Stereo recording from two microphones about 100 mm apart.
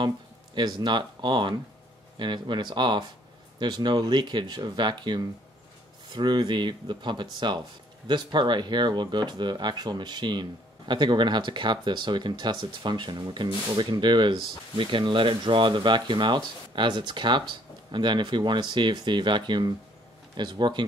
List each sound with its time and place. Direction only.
0.6 s speech: 45° right (ahead or behind)